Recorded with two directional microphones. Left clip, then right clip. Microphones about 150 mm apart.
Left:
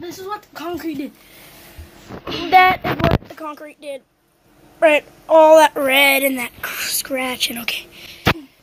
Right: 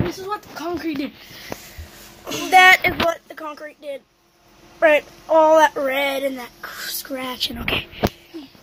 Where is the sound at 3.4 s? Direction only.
20° left (ahead or behind).